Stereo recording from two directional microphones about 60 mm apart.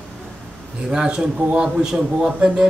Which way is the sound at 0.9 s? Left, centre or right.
Centre.